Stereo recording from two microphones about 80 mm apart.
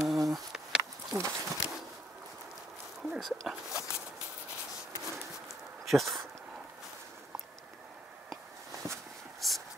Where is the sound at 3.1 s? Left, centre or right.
Centre.